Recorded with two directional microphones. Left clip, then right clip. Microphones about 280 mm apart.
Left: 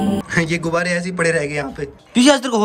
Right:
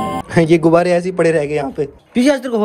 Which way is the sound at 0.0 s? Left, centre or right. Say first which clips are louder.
Right 4 dB; centre.